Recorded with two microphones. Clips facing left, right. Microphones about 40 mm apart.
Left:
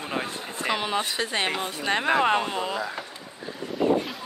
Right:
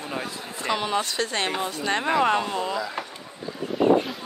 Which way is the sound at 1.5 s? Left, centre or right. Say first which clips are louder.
Right 1 dB; left.